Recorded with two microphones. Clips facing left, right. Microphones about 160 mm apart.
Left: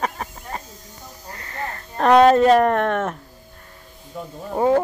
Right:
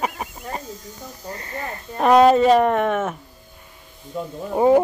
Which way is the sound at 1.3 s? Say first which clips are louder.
Right 6 dB; 25° right (ahead or behind).